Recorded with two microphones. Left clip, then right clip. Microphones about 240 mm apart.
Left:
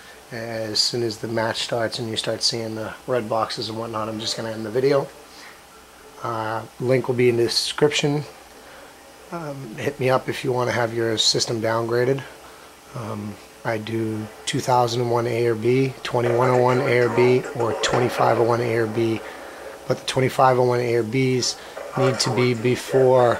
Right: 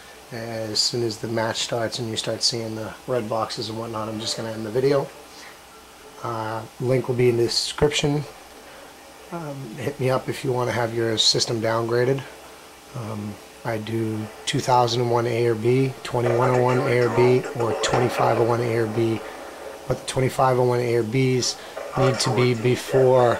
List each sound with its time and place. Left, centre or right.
0.3 s speech: centre
3.7 s speech: centre
4.2 s speech: centre
6.3 s speech: centre
9.3 s speech: centre
13.7 s speech: centre
17.7 s speech: centre